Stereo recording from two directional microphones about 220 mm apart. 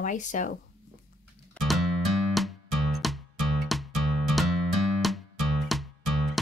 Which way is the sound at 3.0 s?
Centre (ahead or behind).